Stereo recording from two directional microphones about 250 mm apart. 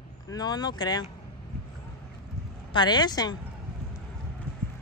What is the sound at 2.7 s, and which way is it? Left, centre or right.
Speech, centre.